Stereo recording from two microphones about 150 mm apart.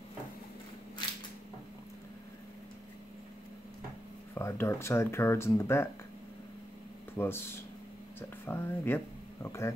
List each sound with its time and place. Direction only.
4.4 s speech: 15° left (ahead or behind)
7.2 s speech: 15° left (ahead or behind)